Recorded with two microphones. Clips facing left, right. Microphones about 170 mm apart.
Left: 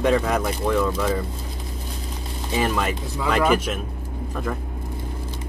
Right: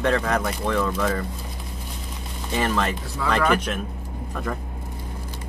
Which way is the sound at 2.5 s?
5° left (ahead or behind).